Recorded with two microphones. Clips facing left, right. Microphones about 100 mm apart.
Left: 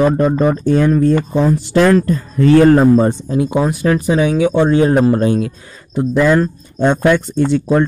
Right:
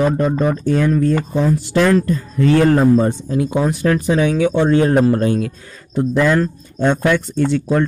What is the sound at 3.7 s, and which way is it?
Speech, 10° left (ahead or behind).